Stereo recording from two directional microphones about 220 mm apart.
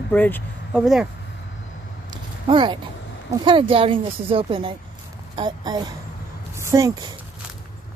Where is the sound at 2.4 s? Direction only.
20° right (ahead or behind).